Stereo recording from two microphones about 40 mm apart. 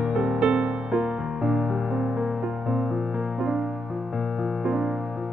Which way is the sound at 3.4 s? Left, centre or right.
Centre.